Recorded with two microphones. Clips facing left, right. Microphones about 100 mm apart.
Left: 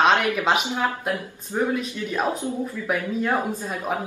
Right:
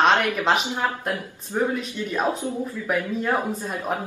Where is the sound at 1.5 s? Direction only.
Centre (ahead or behind).